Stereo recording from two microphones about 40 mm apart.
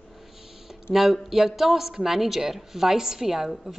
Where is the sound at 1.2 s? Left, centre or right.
Centre.